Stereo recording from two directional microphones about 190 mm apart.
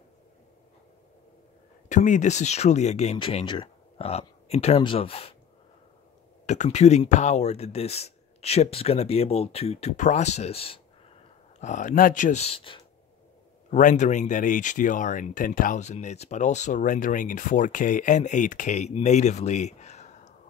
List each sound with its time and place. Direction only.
1.9 s speech: 40° left (ahead or behind)
6.4 s speech: 40° left (ahead or behind)
11.6 s speech: 40° left (ahead or behind)
13.7 s speech: 40° left (ahead or behind)